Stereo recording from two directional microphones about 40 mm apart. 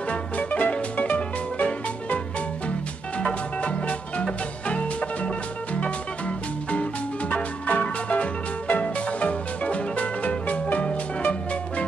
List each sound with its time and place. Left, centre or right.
0.1 s music: left
3.6 s music: left